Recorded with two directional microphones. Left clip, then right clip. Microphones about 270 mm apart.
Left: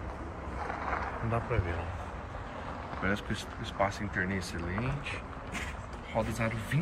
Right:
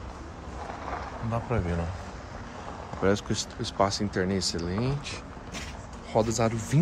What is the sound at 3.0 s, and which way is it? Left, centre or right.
Speech, centre.